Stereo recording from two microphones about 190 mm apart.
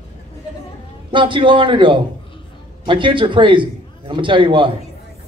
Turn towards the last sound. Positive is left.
turn(degrees=-25)  # may be behind; listen again after turning